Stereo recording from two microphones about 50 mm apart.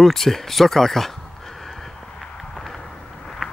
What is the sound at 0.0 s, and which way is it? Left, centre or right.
Speech, centre.